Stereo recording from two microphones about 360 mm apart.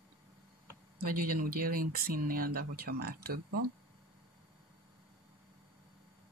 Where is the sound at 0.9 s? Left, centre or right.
Right.